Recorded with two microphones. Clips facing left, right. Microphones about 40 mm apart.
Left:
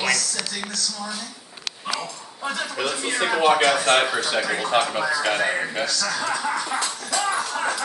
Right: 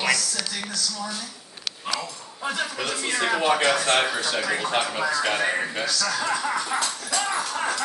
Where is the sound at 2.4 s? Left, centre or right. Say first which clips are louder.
Even; centre.